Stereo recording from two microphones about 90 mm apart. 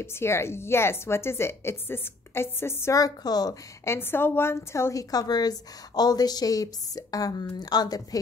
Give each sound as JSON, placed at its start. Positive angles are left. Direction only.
{"t": 0.0, "sound": "speech", "side_deg": 30}
{"t": 3.0, "sound": "a woman's voice", "side_deg": 45}
{"t": 3.8, "sound": "speech", "side_deg": 25}
{"t": 5.1, "sound": "a woman's voice", "side_deg": 45}